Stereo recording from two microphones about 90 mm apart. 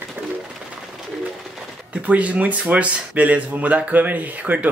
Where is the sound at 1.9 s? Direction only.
15° right (ahead or behind).